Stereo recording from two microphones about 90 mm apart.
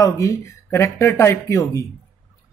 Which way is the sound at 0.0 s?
35° left (ahead or behind).